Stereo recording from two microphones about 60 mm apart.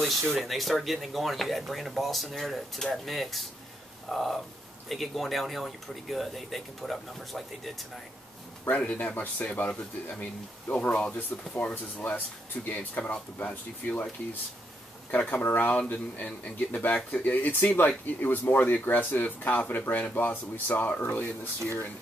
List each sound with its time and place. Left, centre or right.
0.0 s speech: centre
8.6 s speech: left
15.0 s speech: left